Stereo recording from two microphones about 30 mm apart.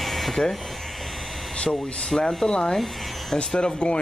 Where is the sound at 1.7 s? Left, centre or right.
Left.